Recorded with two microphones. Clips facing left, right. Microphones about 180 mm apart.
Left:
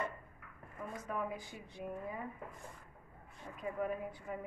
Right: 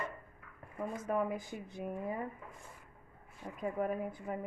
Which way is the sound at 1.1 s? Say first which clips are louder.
Right 6 dB; 45° right (ahead or behind).